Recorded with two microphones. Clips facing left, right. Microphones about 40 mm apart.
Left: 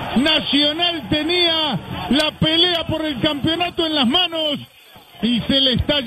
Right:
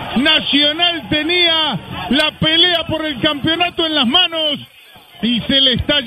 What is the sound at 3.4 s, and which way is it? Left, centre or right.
A man's voice, centre.